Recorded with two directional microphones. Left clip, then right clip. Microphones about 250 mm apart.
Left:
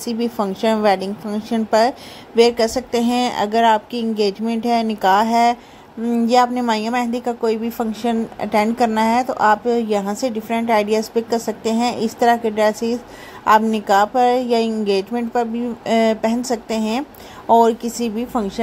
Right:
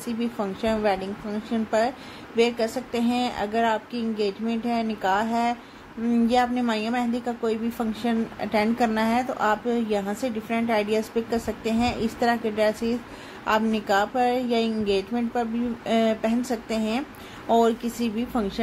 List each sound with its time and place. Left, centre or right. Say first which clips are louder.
0.0 s a woman's voice: left 7 dB; left